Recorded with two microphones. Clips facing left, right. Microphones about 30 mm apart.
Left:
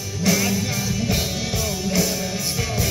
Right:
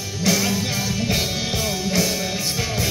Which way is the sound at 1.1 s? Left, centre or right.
Right.